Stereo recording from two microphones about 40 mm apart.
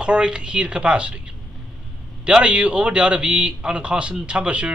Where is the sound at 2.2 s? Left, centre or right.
Right.